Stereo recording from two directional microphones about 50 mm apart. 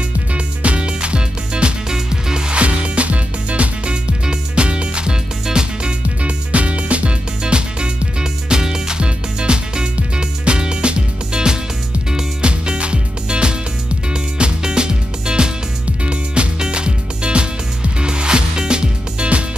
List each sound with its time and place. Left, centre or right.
0.3 s music: right